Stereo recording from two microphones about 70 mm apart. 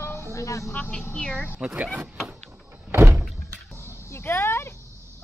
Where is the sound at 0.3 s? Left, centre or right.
Left.